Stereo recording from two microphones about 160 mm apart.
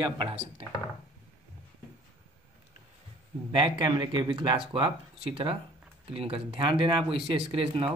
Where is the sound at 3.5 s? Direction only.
30° right (ahead or behind).